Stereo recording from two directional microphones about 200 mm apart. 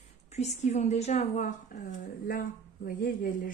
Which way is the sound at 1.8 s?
45° left (ahead or behind).